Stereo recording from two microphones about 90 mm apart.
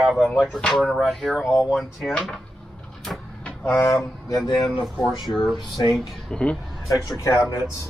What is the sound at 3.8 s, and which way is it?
Speech, 35° left (ahead or behind).